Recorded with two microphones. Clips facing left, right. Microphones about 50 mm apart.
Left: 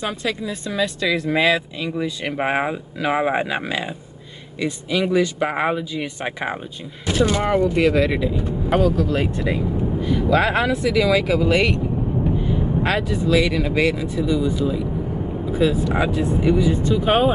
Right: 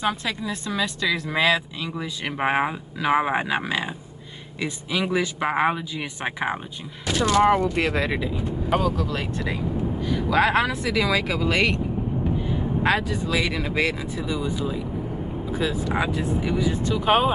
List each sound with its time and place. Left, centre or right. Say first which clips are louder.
0.0 s speech: left 1 dB; centre
4.6 s speech: left 4 dB; centre
7.1 s speech: even; centre
7.7 s speech: left 6 dB; centre
8.7 s speech: left 6 dB; centre
10.1 s speech: left 1 dB; centre
12.8 s speech: right 1 dB; centre
15.6 s speech: left 6 dB; centre